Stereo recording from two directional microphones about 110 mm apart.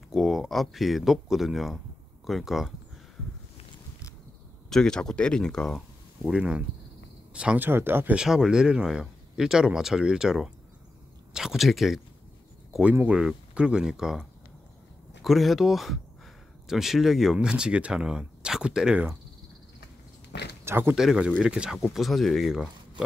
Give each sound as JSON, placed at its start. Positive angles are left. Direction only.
{"t": 0.1, "sound": "speech", "side_deg": 0}
{"t": 4.6, "sound": "speech", "side_deg": 5}
{"t": 8.2, "sound": "speech", "side_deg": -5}
{"t": 13.1, "sound": "speech", "side_deg": -5}
{"t": 15.2, "sound": "speech", "side_deg": 0}
{"t": 20.6, "sound": "speech", "side_deg": -20}
{"t": 20.9, "sound": "speech", "side_deg": -5}